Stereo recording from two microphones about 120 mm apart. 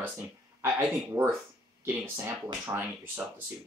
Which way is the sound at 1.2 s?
25° right (ahead or behind).